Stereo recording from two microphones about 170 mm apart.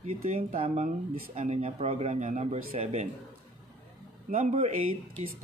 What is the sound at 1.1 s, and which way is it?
Speech, 60° right (ahead or behind).